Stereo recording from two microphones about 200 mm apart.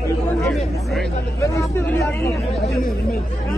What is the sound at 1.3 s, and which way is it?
Speech, 15° left (ahead or behind).